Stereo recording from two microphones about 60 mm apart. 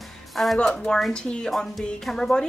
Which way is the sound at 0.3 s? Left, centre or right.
Centre.